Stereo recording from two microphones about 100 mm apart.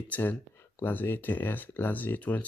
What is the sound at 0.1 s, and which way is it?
Speech, 20° left (ahead or behind).